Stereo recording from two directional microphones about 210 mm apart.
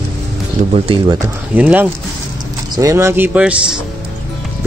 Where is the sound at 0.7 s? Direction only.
25° right (ahead or behind).